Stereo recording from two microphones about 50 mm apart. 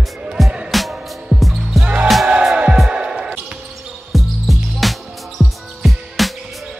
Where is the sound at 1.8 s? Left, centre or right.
Right.